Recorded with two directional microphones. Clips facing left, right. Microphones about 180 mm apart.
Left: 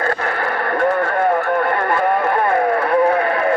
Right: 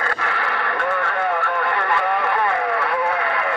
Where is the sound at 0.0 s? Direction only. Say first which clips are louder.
Left 5 dB; 40° left (ahead or behind).